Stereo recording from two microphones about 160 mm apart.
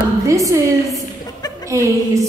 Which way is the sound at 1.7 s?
20° right (ahead or behind).